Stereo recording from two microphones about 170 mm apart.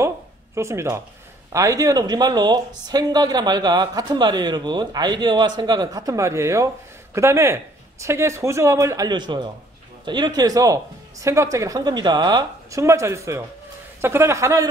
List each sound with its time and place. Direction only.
0.6 s speech: 15° right (ahead or behind)